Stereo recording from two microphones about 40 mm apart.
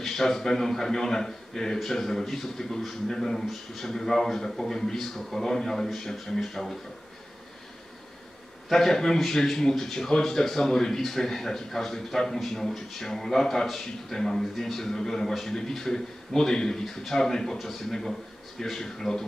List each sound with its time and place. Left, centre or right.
0.0 s speech: centre
8.6 s speech: centre